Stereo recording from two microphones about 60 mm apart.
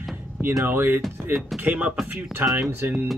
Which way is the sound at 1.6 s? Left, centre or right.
Right.